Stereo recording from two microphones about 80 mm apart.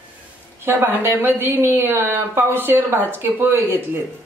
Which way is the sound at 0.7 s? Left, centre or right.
Right.